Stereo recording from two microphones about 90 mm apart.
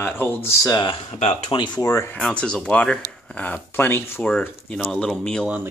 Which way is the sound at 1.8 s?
35° left (ahead or behind).